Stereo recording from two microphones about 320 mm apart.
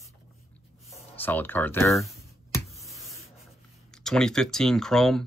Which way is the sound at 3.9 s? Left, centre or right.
Centre.